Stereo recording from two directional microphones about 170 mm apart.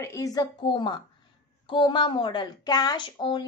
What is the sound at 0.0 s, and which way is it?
A woman's voice, 20° left (ahead or behind).